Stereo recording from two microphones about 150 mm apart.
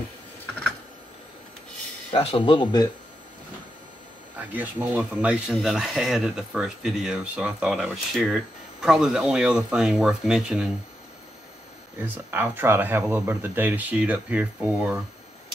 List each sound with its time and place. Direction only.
2.0 s speech: 40° left (ahead or behind)
4.5 s speech: 10° right (ahead or behind)
12.0 s speech: 15° right (ahead or behind)